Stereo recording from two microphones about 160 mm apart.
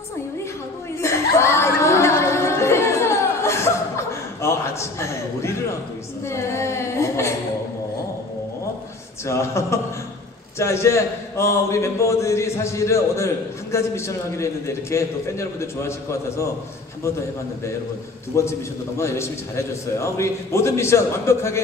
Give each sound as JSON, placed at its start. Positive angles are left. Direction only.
{"t": 1.0, "sound": "a sound", "side_deg": 15}
{"t": 9.2, "sound": "a man's voice", "side_deg": 15}
{"t": 18.3, "sound": "a man's voice", "side_deg": 15}